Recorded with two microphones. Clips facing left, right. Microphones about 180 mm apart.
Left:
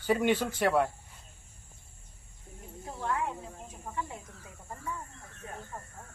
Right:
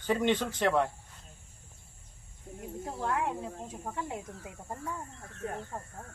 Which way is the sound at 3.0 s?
60° right (ahead or behind).